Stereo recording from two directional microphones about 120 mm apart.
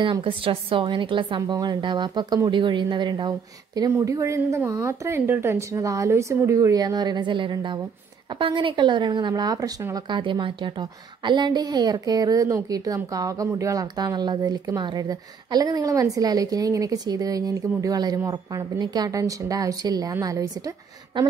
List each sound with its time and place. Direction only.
0.0 s a woman's voice: 45° right (ahead or behind)